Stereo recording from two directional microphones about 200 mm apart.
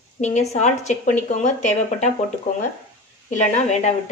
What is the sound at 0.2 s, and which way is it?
A woman's voice, 35° left (ahead or behind).